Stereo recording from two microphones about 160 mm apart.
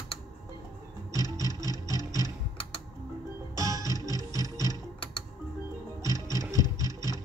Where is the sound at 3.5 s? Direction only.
20° right (ahead or behind).